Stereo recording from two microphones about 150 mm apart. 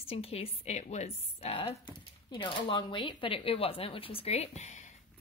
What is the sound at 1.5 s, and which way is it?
A woman's voice, 35° left (ahead or behind).